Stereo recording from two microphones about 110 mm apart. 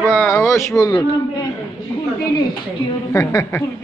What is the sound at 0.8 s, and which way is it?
Speech, 35° left (ahead or behind).